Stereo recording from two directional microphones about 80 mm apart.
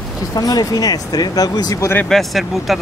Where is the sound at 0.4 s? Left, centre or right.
Left.